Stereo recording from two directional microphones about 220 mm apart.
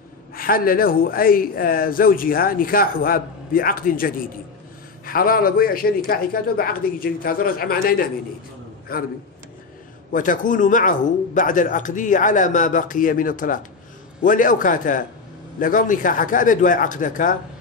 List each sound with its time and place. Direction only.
0.3 s a man's voice: 40° left (ahead or behind)
10.1 s a man's voice: 35° left (ahead or behind)